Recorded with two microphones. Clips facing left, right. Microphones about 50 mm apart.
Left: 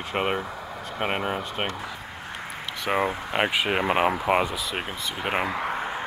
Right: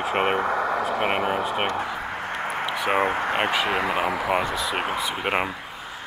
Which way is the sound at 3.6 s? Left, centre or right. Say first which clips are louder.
Right 1 dB; right.